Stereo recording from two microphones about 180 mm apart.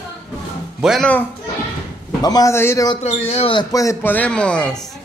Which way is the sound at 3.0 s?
35° left (ahead or behind).